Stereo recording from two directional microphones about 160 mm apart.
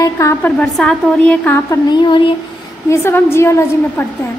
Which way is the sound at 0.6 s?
5° left (ahead or behind).